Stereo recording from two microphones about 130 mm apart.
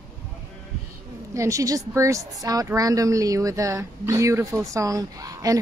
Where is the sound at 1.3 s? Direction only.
25° right (ahead or behind).